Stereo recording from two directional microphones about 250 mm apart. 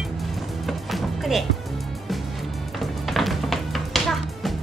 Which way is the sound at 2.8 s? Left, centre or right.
Centre.